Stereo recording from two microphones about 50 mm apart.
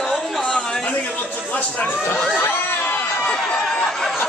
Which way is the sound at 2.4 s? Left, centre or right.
Left.